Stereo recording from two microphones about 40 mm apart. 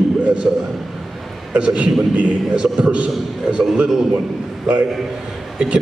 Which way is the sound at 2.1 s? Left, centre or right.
Right.